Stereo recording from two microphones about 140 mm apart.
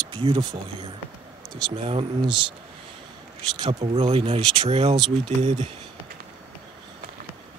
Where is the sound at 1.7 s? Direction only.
40° right (ahead or behind).